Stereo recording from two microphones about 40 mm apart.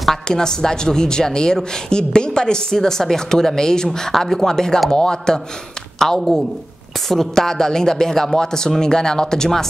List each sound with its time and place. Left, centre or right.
0.3 s a woman's voice: centre